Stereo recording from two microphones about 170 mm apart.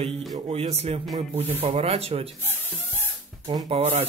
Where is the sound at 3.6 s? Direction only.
40° right (ahead or behind).